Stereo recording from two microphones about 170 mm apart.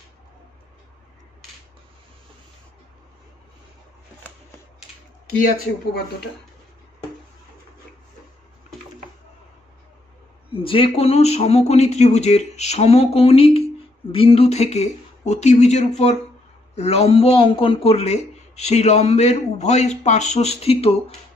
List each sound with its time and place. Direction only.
10.5 s speech: 30° left (ahead or behind)